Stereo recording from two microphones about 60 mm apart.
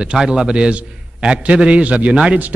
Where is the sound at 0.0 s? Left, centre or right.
Centre.